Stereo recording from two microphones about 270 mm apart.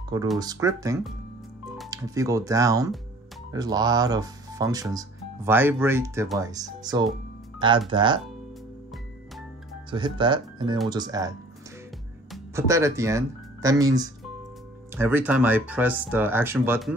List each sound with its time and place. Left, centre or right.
0.4 s speech: centre
9.8 s speech: centre
12.5 s speech: centre